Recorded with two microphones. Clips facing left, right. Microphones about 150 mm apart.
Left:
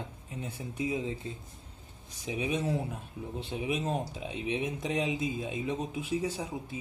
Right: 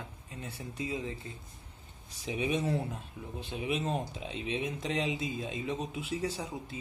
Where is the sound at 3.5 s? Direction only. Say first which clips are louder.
Left 1 dB; 10° left (ahead or behind).